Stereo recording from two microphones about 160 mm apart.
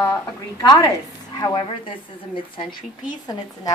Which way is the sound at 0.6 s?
25° left (ahead or behind).